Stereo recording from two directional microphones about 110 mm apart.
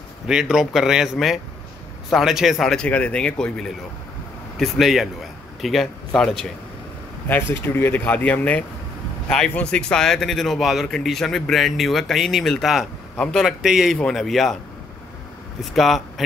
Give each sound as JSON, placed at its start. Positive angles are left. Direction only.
{"t": 0.3, "sound": "speech", "side_deg": -5}
{"t": 7.2, "sound": "speech", "side_deg": 20}
{"t": 15.6, "sound": "speech", "side_deg": 0}